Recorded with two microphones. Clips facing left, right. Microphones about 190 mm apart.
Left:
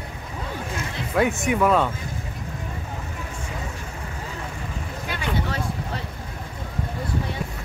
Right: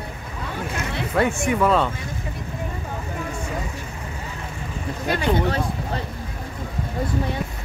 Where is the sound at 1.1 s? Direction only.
Centre (ahead or behind).